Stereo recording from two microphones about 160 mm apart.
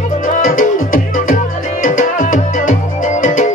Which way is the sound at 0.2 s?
55° left (ahead or behind).